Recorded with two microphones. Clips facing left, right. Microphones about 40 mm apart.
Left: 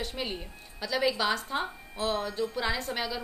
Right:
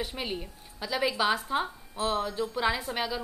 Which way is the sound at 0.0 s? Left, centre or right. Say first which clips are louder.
Right 1 dB; centre.